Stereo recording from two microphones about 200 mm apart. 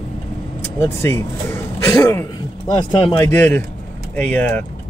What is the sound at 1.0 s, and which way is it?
Speech, 10° left (ahead or behind).